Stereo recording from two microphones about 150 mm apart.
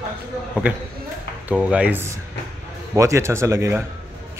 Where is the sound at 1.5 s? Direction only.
10° right (ahead or behind).